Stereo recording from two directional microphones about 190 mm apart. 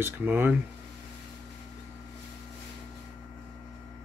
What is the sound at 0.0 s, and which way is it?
Speech, 10° right (ahead or behind).